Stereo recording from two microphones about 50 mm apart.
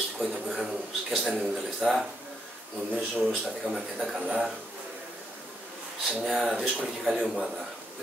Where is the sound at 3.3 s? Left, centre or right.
Centre.